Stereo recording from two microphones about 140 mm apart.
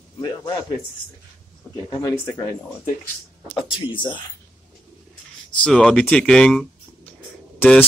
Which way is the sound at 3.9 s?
35° left (ahead or behind).